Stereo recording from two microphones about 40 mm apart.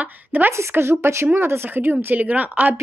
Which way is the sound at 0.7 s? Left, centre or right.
Right.